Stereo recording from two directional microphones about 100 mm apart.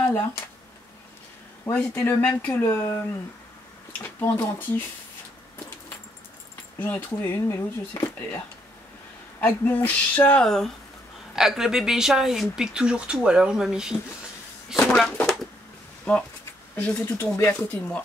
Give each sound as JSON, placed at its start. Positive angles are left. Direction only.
{"t": 0.0, "sound": "speech", "side_deg": 20}
{"t": 1.7, "sound": "speech", "side_deg": 20}
{"t": 4.0, "sound": "speech", "side_deg": 20}
{"t": 6.8, "sound": "speech", "side_deg": 20}
{"t": 9.4, "sound": "speech", "side_deg": 20}
{"t": 11.3, "sound": "speech", "side_deg": -5}
{"t": 15.0, "sound": "a sound", "side_deg": 5}
{"t": 16.1, "sound": "speech", "side_deg": 10}